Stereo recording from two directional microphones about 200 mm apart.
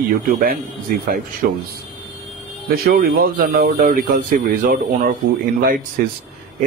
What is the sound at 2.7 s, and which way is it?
Speech, 50° right (ahead or behind).